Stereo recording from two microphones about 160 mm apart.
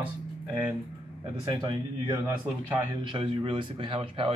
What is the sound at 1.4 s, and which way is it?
A man's voice, 30° right (ahead or behind).